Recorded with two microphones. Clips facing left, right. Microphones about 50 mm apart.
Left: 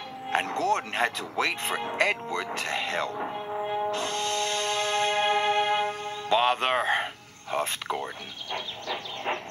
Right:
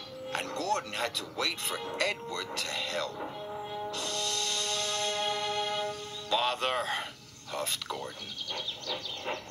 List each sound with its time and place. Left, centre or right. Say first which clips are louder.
0.3 s music: left 6 dB; left
7.5 s speech: left 6 dB; left